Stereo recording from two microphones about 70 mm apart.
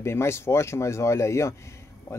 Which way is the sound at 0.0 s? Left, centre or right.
Left.